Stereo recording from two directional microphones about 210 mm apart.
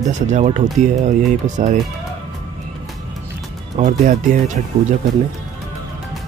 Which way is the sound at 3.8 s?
35° right (ahead or behind).